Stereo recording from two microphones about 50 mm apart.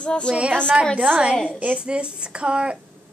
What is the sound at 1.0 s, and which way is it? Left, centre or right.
A woman's voice, centre.